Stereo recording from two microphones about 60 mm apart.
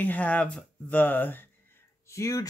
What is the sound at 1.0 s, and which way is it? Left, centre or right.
Speech, left.